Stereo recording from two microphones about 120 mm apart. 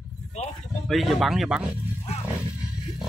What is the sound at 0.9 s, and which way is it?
Speech, centre (ahead or behind).